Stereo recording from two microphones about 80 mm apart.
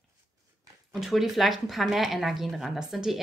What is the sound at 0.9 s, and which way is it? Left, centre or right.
A woman's voice, centre.